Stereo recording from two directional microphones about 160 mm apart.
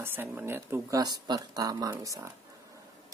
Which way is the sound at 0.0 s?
15° right (ahead or behind).